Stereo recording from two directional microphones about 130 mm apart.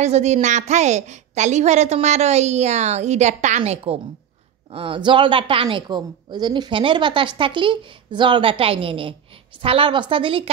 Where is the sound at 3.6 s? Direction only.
50° right (ahead or behind).